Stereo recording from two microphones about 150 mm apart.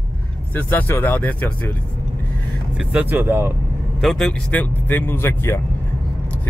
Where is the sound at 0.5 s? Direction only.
10° left (ahead or behind).